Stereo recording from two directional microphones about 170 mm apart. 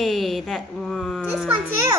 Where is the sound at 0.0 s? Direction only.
Centre (ahead or behind).